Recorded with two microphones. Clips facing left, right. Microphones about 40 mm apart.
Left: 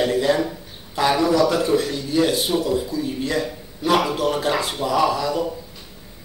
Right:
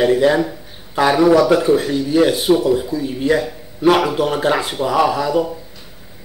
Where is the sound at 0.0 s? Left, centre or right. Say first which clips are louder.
Right 5 dB; centre.